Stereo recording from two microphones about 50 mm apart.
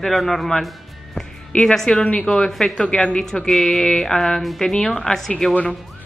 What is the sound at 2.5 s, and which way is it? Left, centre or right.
Speech, centre.